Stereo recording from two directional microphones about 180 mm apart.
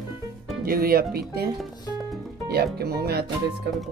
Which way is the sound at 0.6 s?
55° right (ahead or behind).